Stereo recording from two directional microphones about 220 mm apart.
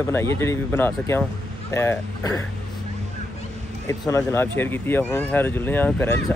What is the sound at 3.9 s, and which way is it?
Speech, 15° left (ahead or behind).